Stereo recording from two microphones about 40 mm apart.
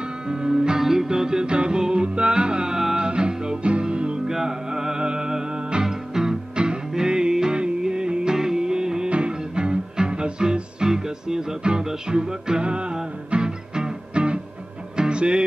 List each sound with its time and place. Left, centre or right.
0.0 s music: centre
3.1 s music: right
4.3 s music: centre
5.9 s music: centre
6.5 s music: right
9.1 s music: right